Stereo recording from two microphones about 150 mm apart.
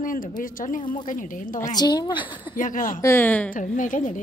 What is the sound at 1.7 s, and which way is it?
Speech, 30° left (ahead or behind).